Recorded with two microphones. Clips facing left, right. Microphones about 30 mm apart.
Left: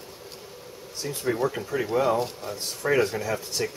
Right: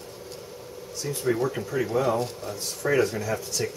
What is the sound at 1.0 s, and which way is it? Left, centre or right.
Speech, centre.